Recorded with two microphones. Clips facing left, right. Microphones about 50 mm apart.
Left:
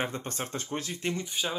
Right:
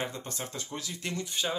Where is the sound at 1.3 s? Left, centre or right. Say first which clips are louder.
Even; centre.